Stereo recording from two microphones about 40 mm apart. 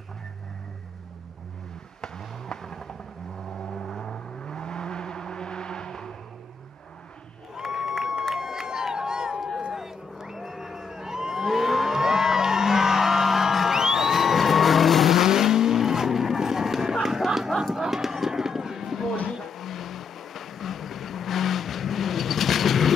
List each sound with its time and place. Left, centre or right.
2.0 s a sound: centre
3.7 s vehicle: centre
7.6 s crowd: centre
8.0 s crowd: centre
8.4 s music: centre
9.7 s a sound: centre
12.0 s music: centre
15.1 s vehicle: centre
17.7 s a sound: centre
19.3 s vehicle: centre